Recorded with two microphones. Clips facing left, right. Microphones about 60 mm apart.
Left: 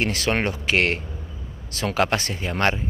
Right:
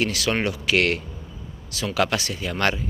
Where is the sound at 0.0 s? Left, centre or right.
Left.